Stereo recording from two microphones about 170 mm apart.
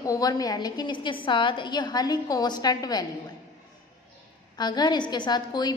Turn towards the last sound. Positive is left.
turn(degrees=25)  # may be behind; listen again after turning